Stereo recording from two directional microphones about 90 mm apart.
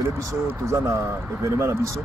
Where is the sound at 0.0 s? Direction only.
30° right (ahead or behind).